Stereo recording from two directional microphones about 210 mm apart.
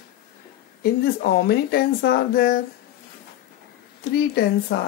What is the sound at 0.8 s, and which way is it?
Speech, 50° left (ahead or behind).